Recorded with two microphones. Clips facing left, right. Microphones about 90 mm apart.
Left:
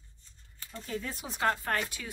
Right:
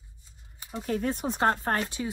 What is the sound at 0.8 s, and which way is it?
Speech, 50° right (ahead or behind).